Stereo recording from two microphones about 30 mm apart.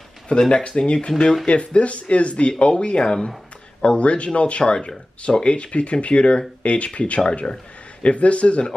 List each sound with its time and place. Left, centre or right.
0.3 s speech: left
1.5 s speech: left
3.8 s speech: left
7.2 s speech: left
8.0 s speech: left